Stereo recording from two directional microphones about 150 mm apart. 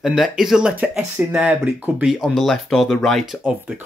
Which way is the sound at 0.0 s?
Centre (ahead or behind).